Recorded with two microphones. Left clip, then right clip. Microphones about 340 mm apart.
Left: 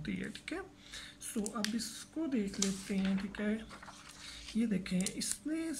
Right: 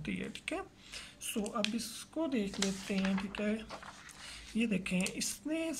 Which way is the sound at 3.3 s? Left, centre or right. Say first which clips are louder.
Right 2 dB; centre.